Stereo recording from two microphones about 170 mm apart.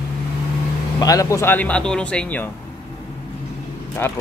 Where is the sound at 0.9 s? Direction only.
20° left (ahead or behind).